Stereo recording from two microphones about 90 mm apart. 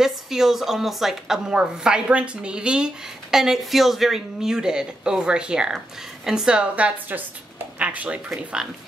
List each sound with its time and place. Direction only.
0.0 s a woman's voice: 5° right (ahead or behind)